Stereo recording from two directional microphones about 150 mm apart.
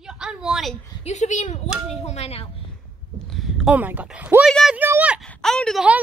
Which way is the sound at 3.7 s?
10° right (ahead or behind).